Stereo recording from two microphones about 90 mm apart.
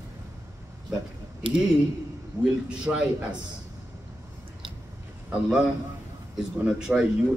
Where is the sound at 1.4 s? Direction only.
75° right (ahead or behind).